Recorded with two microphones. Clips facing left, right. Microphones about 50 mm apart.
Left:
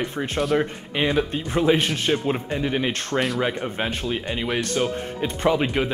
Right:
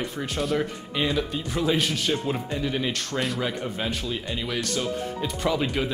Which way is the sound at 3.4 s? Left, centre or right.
Left.